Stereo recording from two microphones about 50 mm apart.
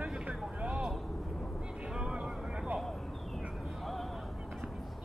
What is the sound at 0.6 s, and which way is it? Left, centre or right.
Vehicle, right.